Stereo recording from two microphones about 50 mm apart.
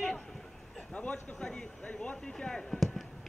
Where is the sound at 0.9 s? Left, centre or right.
Left.